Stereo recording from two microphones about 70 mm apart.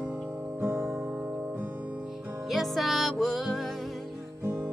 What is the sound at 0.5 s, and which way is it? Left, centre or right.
Music, right.